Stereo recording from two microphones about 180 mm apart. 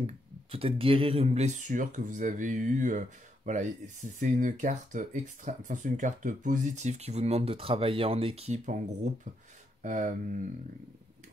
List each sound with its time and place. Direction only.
0.0 s speech: 30° right (ahead or behind)